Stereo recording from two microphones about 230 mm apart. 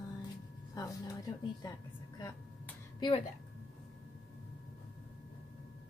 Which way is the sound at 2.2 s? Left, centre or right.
Centre.